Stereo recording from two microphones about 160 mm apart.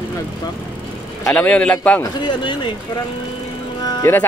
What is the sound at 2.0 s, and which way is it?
Speech, 30° left (ahead or behind).